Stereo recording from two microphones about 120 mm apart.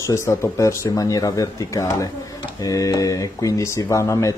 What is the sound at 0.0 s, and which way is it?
Speech, 25° left (ahead or behind).